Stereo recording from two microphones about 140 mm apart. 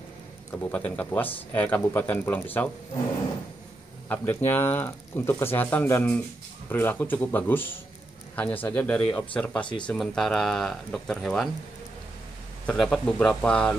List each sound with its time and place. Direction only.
0.6 s speech: 10° left (ahead or behind)
4.1 s speech: 15° left (ahead or behind)
12.6 s speech: 5° left (ahead or behind)